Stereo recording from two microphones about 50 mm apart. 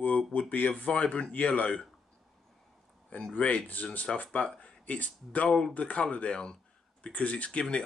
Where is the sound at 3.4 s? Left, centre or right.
Left.